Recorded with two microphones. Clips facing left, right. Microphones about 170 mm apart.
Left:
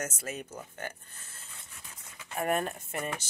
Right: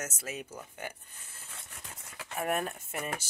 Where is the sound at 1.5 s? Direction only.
70° right (ahead or behind).